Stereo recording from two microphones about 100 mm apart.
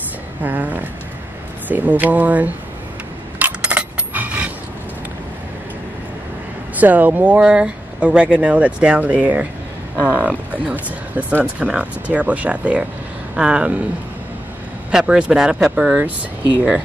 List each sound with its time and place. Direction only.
0.4 s speech: 15° right (ahead or behind)
3.3 s coin: 15° right (ahead or behind)
6.8 s speech: 15° right (ahead or behind)
14.9 s speech: 10° right (ahead or behind)